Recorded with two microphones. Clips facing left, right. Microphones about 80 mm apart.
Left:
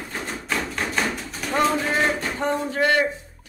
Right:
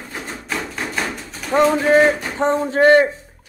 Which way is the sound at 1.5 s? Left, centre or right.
Centre.